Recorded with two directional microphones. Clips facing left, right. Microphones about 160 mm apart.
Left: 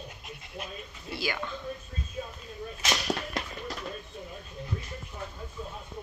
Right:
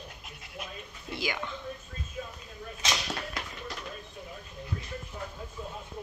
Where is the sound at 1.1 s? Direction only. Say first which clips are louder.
Left 1 dB; 15° right (ahead or behind).